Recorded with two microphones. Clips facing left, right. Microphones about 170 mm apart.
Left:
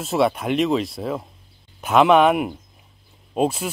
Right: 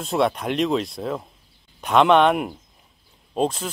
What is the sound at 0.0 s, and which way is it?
Speech, centre (ahead or behind).